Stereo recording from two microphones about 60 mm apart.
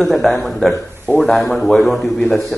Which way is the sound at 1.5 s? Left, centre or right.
Centre.